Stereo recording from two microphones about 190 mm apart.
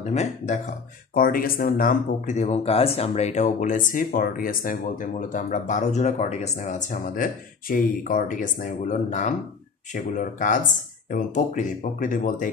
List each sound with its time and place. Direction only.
0.0 s speech: 35° left (ahead or behind)
1.1 s speech: 50° left (ahead or behind)